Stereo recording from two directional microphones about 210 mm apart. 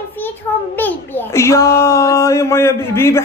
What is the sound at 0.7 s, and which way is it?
A child's voice, 10° left (ahead or behind).